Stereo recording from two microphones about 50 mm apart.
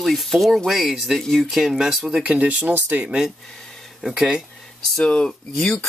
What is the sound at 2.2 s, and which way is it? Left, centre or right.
Speech, right.